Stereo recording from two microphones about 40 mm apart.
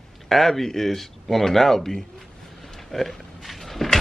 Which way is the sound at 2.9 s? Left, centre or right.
Centre.